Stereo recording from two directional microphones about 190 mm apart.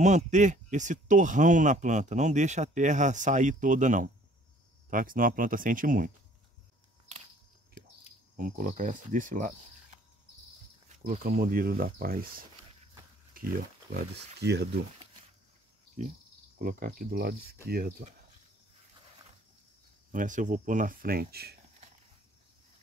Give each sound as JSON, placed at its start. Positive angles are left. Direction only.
{"t": 0.0, "sound": "speech", "side_deg": -40}
{"t": 8.4, "sound": "speech", "side_deg": -45}
{"t": 10.9, "sound": "speech", "side_deg": -40}
{"t": 13.4, "sound": "pig", "side_deg": -50}
{"t": 13.9, "sound": "speech", "side_deg": -60}
{"t": 16.5, "sound": "speech", "side_deg": -45}
{"t": 20.1, "sound": "speech", "side_deg": -45}